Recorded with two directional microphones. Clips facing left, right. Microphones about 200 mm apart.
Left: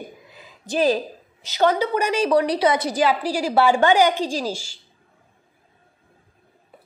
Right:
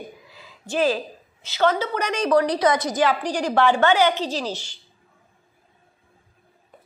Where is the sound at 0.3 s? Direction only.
15° left (ahead or behind).